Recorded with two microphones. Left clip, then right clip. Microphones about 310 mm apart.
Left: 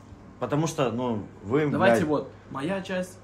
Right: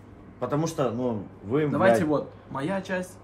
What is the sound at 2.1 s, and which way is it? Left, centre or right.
Speech, centre.